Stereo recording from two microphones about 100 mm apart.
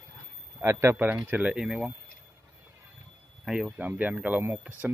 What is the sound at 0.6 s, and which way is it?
Speech, 25° right (ahead or behind).